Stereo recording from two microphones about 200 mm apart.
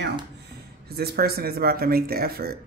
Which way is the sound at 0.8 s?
50° right (ahead or behind).